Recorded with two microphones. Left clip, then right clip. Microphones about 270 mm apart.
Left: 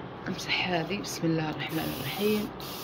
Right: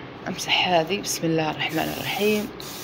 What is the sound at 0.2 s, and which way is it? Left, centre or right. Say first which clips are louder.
Speech: right 8 dB; centre.